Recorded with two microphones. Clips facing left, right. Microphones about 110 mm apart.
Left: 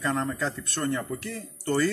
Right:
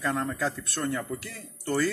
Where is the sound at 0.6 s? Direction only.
70° left (ahead or behind).